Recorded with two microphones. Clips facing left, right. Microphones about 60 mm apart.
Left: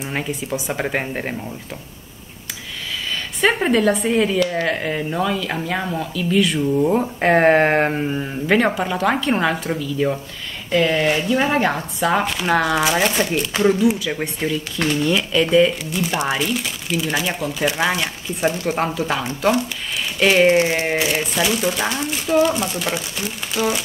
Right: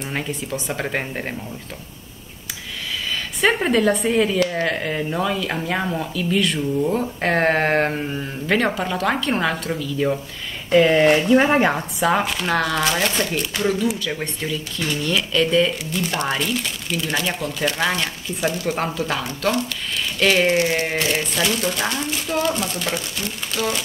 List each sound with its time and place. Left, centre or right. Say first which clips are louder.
0.0 s speech: left 2 dB; centre
3.3 s speech: left 1 dB; centre
6.8 s speech: left 4 dB; centre
10.7 s speech: right 3 dB; centre
12.0 s speech: left 1 dB; centre; by 13.7 s left
13.9 s speech: left 2 dB; centre
18.4 s speech: left 2 dB; left
18.8 s speech: left 2 dB; centre
19.2 s speech: left 3 dB; centre